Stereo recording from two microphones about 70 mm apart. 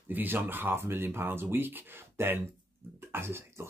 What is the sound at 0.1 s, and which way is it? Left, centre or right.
Speech, right.